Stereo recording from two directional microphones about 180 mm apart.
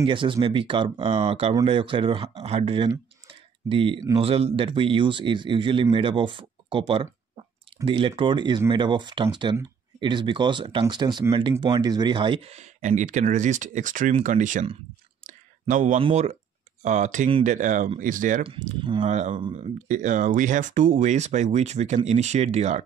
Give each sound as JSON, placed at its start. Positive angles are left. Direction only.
{"t": 0.0, "sound": "speech", "side_deg": -30}
{"t": 3.3, "sound": "clicking", "side_deg": -30}
{"t": 4.2, "sound": "speech", "side_deg": -35}
{"t": 15.7, "sound": "speech", "side_deg": -45}
{"t": 18.4, "sound": "speech", "side_deg": -30}
{"t": 19.0, "sound": "speech", "side_deg": -40}